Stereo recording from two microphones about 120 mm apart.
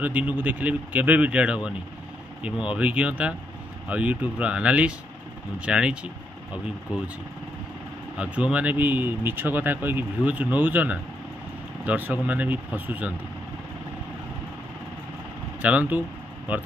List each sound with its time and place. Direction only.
0.0 s speech: 15° right (ahead or behind)
8.2 s speech: 10° right (ahead or behind)
15.6 s speech: 15° right (ahead or behind)